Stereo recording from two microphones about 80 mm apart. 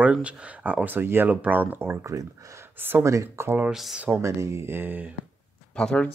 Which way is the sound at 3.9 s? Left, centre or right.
Right.